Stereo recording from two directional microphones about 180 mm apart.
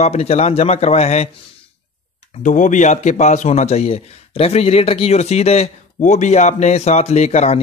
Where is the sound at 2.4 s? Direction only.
45° left (ahead or behind).